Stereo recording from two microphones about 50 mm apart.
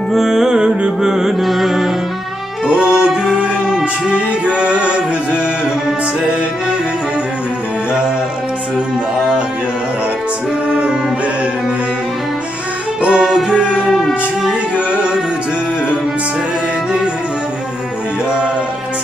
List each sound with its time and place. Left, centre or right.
0.1 s music: centre
2.6 s music: right
10.7 s music: centre
13.0 s music: centre